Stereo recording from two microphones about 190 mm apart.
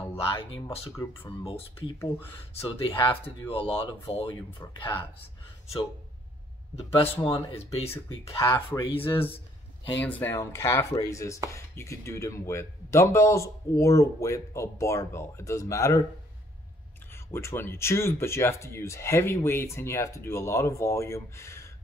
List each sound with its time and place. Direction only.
0.2 s speech: 30° left (ahead or behind)
2.8 s speech: 30° left (ahead or behind)
6.7 s speech: 30° left (ahead or behind)
7.9 s speech: 15° left (ahead or behind)
8.6 s speech: 25° left (ahead or behind)
10.0 s speech: 10° left (ahead or behind)
17.1 s speech: 15° left (ahead or behind)